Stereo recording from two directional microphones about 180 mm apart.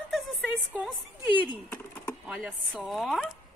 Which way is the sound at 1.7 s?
10° left (ahead or behind).